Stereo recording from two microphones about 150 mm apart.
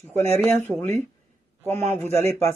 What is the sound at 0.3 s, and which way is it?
Speech, 15° left (ahead or behind).